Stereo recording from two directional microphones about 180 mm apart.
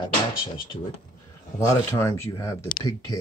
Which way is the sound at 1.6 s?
20° left (ahead or behind).